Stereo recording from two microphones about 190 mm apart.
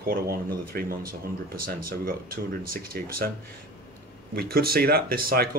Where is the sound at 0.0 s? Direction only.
50° right (ahead or behind).